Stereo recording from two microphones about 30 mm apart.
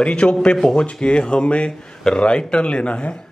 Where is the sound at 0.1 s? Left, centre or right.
Left.